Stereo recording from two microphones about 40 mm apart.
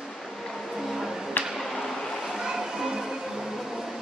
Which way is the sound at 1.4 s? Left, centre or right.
Left.